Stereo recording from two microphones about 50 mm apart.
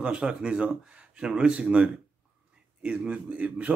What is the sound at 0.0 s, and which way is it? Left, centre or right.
A man's voice, centre.